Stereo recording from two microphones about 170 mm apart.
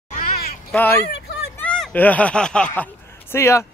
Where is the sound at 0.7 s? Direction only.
10° left (ahead or behind).